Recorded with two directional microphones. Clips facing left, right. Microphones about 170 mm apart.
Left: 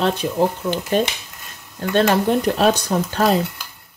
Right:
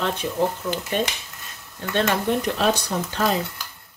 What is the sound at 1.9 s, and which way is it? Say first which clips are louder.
Speech: left 5 dB; 40° left (ahead or behind).